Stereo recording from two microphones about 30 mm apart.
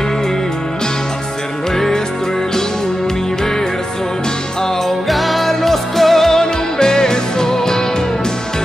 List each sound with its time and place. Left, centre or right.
4.8 s music: centre
6.4 s music: left